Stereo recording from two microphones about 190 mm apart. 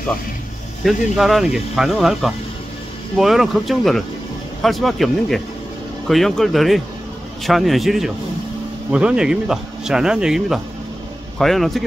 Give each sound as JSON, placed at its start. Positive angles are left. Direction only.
{"t": 0.8, "sound": "speech", "side_deg": 0}